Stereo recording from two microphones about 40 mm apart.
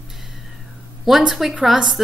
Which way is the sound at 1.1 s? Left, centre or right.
Centre.